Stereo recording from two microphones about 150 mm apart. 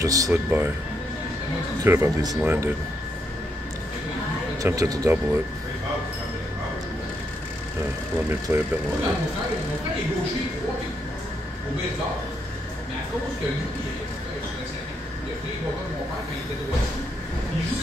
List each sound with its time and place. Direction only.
0.0 s speech: 25° right (ahead or behind)
0.3 s speech: 15° right (ahead or behind)
1.9 s speech: 20° right (ahead or behind)
4.6 s speech: 25° right (ahead or behind)
8.3 s speech: 15° right (ahead or behind)